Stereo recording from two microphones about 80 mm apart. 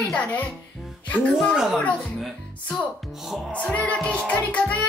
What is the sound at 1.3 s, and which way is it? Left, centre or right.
Music, centre.